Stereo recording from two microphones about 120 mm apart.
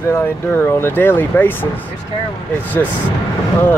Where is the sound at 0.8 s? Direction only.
20° left (ahead or behind).